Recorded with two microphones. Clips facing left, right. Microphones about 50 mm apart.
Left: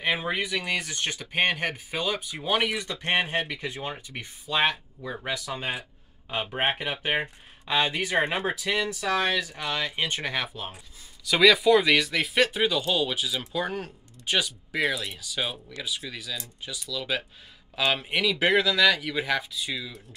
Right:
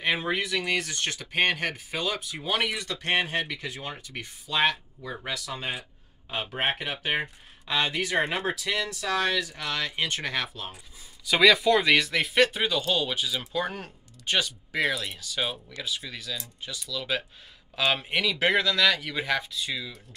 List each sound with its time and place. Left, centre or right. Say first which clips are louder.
0.0 s speech: even; centre
11.2 s speech: left 1 dB; centre